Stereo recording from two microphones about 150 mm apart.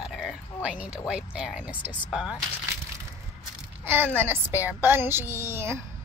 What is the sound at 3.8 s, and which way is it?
A woman's voice, 15° right (ahead or behind).